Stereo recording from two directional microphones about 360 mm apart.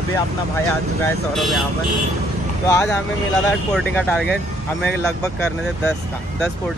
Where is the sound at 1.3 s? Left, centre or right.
Centre.